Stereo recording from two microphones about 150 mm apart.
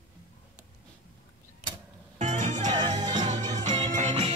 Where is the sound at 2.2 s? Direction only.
50° right (ahead or behind).